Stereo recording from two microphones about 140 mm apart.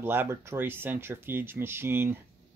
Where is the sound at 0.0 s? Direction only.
15° right (ahead or behind).